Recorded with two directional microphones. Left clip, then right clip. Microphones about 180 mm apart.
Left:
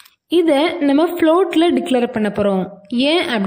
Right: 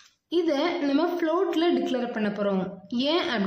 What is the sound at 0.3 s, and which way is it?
A woman's voice, 40° left (ahead or behind).